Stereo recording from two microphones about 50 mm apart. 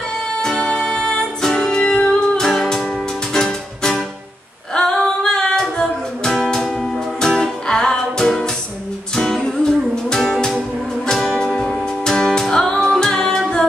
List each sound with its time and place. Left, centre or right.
0.4 s music: centre
1.8 s music: centre
2.4 s music: centre